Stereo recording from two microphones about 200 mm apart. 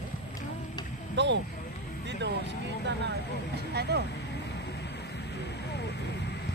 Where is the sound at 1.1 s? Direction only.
60° right (ahead or behind).